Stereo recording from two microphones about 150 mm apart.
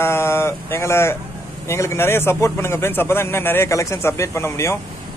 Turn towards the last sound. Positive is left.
turn(degrees=20)  # may be behind; listen again after turning